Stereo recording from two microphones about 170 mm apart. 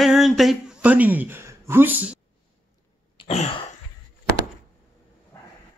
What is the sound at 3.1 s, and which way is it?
Throat clearing, 40° left (ahead or behind).